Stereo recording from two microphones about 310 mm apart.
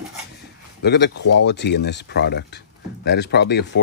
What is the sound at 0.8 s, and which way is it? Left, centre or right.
Speech, left.